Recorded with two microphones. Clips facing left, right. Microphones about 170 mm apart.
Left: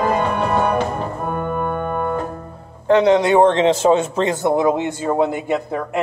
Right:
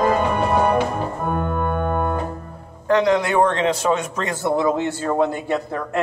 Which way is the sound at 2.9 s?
25° left (ahead or behind).